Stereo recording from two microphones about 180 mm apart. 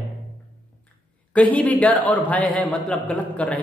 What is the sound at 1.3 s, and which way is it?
A man's voice, 10° left (ahead or behind).